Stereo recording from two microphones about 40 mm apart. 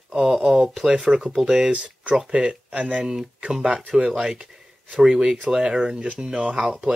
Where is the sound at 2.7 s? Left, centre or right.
Right.